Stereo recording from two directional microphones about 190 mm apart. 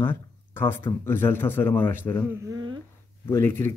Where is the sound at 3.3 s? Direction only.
10° left (ahead or behind).